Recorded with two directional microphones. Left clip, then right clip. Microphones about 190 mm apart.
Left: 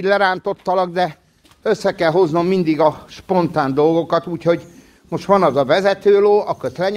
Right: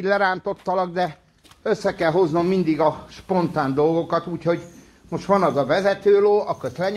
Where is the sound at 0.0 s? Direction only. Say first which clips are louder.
Left 4 dB; 45° left (ahead or behind).